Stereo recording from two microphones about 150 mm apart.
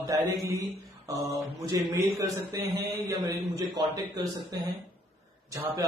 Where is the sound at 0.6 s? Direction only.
20° right (ahead or behind).